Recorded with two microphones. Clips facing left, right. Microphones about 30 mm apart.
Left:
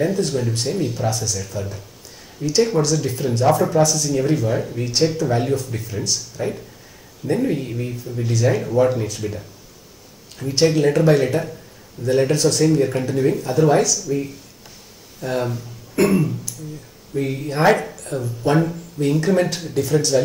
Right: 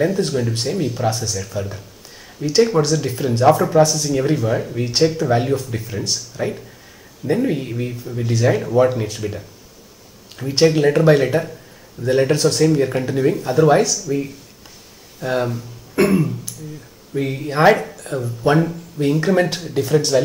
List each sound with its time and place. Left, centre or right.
0.0 s speech: centre
10.4 s speech: centre
15.1 s speech: centre
15.4 s speech: centre